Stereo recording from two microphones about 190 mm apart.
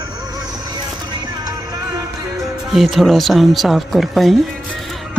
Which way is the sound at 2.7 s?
Centre (ahead or behind).